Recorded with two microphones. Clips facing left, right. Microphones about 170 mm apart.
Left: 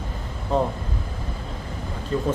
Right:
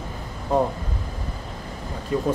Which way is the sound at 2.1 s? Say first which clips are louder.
Right 1 dB; 15° right (ahead or behind).